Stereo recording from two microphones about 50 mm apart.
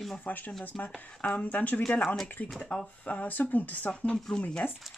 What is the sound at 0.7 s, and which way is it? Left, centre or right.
Speech, centre.